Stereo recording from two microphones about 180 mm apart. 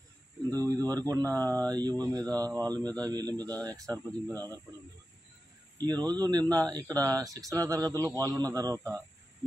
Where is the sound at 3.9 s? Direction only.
10° left (ahead or behind).